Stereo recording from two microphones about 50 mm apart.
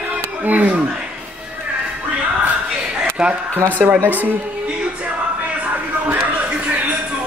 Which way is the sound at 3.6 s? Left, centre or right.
Right.